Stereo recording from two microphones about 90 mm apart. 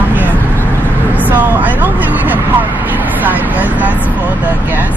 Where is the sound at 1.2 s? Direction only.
20° right (ahead or behind).